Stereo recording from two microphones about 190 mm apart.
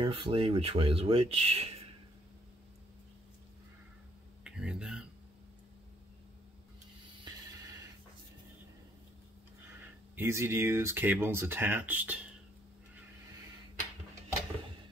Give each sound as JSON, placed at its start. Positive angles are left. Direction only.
{"t": 0.0, "sound": "speech", "side_deg": -25}
{"t": 4.5, "sound": "speech", "side_deg": -5}
{"t": 9.7, "sound": "speech", "side_deg": -10}